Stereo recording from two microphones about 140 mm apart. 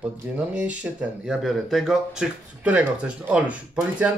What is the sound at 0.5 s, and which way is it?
Speech, 10° right (ahead or behind).